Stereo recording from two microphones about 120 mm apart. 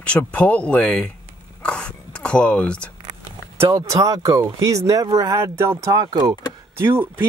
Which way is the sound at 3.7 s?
30° right (ahead or behind).